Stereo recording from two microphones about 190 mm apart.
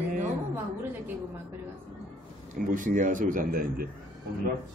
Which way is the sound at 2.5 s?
45° right (ahead or behind).